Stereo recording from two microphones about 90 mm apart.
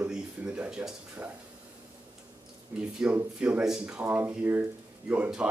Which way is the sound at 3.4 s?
10° right (ahead or behind).